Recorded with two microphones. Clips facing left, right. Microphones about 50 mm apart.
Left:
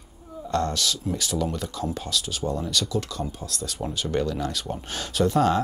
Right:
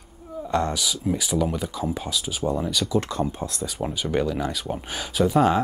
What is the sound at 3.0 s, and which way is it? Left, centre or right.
Speech, right.